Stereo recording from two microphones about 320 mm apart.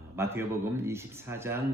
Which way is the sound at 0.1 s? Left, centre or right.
Centre.